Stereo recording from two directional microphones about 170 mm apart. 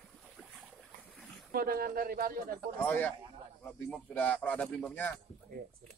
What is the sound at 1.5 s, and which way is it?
Speech, 60° right (ahead or behind).